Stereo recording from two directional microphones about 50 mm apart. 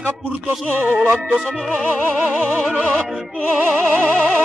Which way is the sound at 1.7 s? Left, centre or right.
Right.